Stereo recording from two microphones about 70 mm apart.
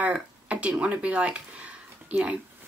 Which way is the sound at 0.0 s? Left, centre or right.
Centre.